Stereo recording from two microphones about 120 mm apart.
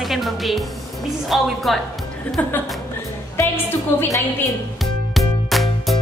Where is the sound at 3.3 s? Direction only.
20° left (ahead or behind).